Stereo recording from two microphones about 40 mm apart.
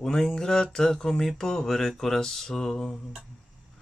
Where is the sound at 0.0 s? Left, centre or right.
Centre.